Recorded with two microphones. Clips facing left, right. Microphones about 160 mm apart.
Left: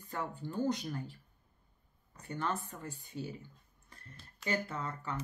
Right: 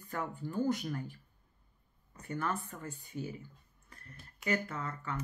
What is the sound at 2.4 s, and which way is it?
Speech, 25° left (ahead or behind).